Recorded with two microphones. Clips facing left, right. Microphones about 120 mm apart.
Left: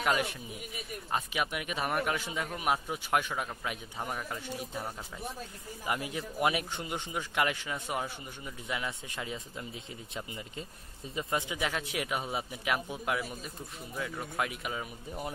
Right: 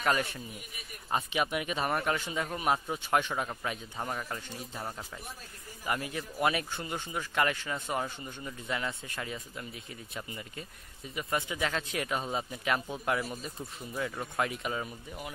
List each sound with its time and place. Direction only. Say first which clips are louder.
0.0 s a man's voice: even; 10° left (ahead or behind)
5.9 s a man's voice: even; 15° left (ahead or behind)